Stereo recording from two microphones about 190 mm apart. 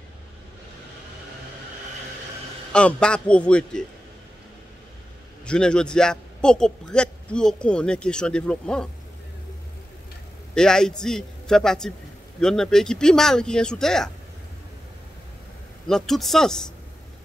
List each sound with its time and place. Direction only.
2.7 s a man's voice: 5° left (ahead or behind)
5.4 s a man's voice: 5° left (ahead or behind)
10.5 s a man's voice: 5° left (ahead or behind)
15.9 s a man's voice: centre (ahead or behind)